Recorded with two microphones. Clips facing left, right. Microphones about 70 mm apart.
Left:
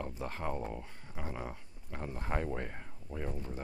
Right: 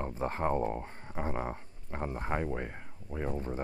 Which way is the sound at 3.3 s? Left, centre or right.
Right.